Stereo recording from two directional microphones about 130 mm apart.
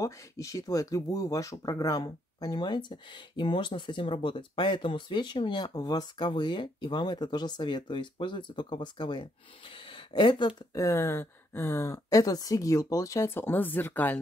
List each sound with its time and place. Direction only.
0.0 s speech: 25° left (ahead or behind)
10.8 s speech: 25° left (ahead or behind)